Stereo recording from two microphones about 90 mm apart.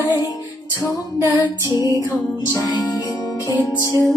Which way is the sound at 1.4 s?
55° left (ahead or behind).